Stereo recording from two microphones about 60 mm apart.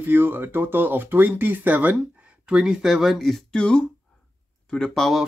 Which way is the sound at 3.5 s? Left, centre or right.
Centre.